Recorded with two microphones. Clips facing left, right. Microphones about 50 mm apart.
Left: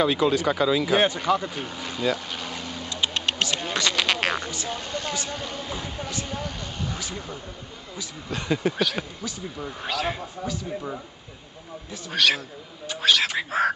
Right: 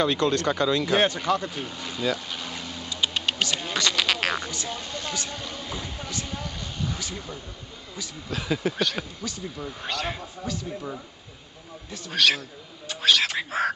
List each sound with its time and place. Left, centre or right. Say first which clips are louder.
0.0 s speech: left 2 dB; centre
2.5 s a sound: left 2 dB; centre
4.5 s speech: left 2 dB; centre
11.9 s bird: even; centre